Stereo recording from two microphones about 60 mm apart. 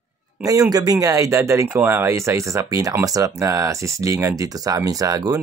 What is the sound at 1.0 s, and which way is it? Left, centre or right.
Speech, right.